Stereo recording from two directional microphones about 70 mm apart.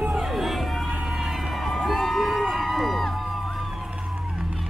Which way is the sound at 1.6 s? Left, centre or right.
Centre.